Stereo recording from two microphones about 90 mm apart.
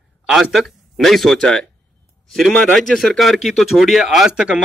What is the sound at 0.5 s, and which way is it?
A man's voice, centre (ahead or behind).